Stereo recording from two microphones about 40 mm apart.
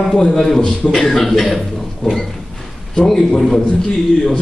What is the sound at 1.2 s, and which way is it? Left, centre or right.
Speech, centre.